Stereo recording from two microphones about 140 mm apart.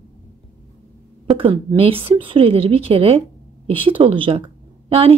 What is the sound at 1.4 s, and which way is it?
A woman's voice, 40° right (ahead or behind).